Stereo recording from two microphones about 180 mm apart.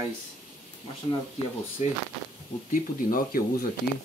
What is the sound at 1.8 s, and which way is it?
Speech, 40° left (ahead or behind).